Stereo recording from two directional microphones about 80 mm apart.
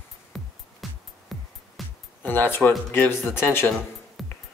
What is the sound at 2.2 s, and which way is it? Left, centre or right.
Speech, left.